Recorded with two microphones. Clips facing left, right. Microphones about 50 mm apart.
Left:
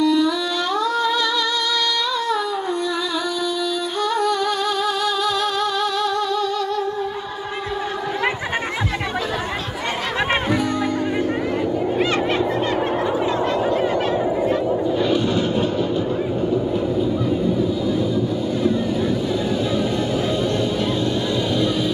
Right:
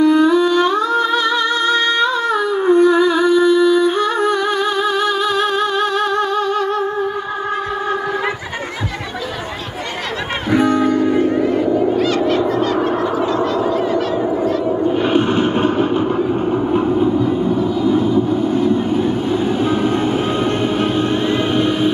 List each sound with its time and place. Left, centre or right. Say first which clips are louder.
0.0 s humming: right 6 dB; right
10.5 s music: right 7 dB; right
12.2 s goose: right 4 dB; left
13.7 s a sound: right 2 dB; left
14.9 s a sound: right 6 dB; right
16.4 s vehicle: right 4 dB; right
21.5 s music: right 5 dB; right